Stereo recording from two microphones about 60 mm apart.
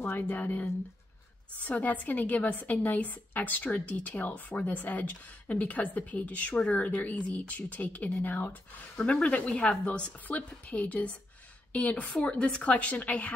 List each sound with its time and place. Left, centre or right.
0.0 s a woman's voice: left